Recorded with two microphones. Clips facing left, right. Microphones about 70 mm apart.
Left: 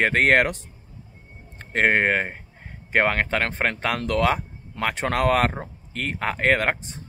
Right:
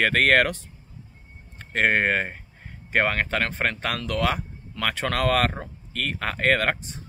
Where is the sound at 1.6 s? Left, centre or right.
Left.